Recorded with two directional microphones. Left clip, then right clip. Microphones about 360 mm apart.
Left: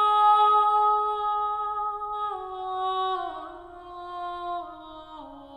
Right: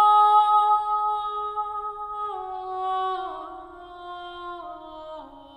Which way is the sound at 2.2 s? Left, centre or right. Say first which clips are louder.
Even; centre.